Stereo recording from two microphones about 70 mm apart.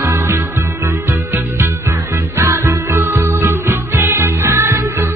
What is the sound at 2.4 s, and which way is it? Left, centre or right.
Music, right.